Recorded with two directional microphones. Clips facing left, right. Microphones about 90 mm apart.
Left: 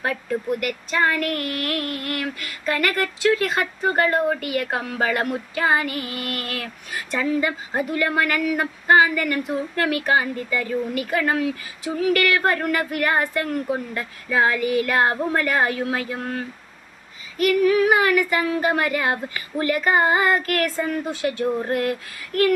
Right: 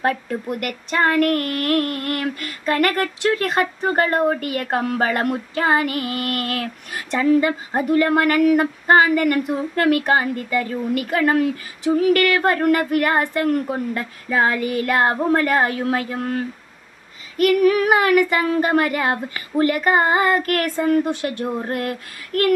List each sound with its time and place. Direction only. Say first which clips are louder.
0.0 s speech: right 3 dB; 45° right (ahead or behind)
7.1 s a woman's voice: right 6 dB; 35° right (ahead or behind)
17.4 s speech: right 2 dB; 50° right (ahead or behind)
21.6 s speech: left 2 dB; 45° right (ahead or behind)